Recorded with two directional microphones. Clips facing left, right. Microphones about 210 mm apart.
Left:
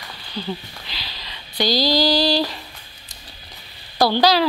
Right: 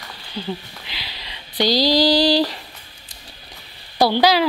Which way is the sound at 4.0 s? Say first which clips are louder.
Right 1 dB; 15° right (ahead or behind).